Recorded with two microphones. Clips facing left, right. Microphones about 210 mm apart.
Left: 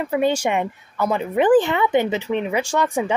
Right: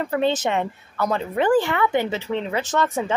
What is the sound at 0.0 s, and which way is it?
A woman's voice, 10° left (ahead or behind).